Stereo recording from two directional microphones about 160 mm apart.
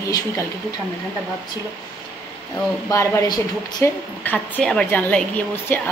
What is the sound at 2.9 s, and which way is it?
A woman's voice, 20° left (ahead or behind).